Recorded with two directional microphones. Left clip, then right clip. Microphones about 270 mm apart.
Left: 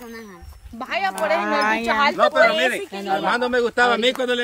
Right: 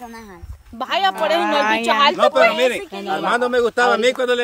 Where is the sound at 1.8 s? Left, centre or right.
Right; by 4.3 s centre.